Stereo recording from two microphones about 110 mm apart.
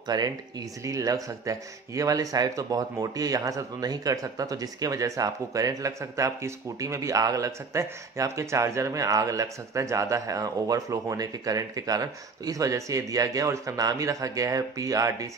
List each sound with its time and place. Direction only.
0.1 s speech: 35° right (ahead or behind)